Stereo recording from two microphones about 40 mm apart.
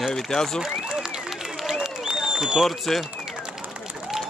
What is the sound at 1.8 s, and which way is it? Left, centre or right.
Applause, centre.